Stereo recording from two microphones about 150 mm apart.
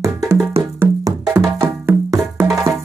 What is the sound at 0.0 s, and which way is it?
Music, 20° right (ahead or behind).